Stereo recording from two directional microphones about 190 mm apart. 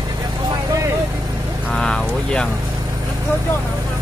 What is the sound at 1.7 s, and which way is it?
Speech, 5° left (ahead or behind).